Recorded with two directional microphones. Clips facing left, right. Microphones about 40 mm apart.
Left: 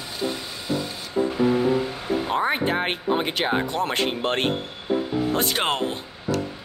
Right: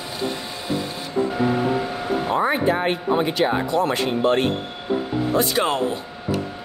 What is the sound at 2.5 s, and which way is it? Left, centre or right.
Speech, left.